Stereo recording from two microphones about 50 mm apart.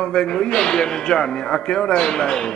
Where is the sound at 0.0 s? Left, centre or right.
Centre.